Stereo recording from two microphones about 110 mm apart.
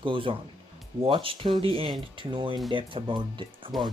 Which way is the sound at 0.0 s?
50° right (ahead or behind).